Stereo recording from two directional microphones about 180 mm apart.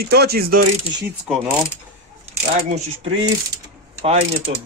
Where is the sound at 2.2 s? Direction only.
35° right (ahead or behind).